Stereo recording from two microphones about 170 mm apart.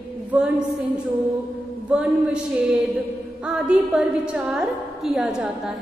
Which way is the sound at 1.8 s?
5° right (ahead or behind).